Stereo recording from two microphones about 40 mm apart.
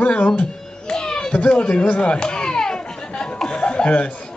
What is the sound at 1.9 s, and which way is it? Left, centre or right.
Snicker, left.